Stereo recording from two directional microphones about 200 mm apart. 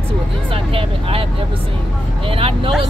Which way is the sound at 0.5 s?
25° right (ahead or behind).